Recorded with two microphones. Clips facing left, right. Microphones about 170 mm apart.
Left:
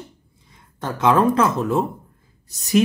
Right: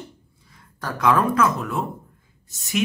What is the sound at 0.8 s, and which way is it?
Speech, 25° left (ahead or behind).